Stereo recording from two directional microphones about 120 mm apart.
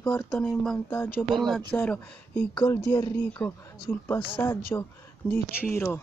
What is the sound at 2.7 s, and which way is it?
Speech, 25° left (ahead or behind).